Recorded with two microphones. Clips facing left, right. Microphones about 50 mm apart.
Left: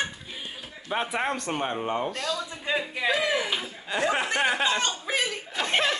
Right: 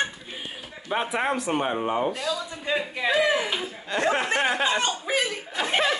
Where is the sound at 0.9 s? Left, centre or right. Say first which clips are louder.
Right 2 dB; centre.